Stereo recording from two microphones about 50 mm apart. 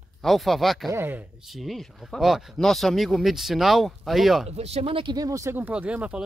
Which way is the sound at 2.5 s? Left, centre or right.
Centre.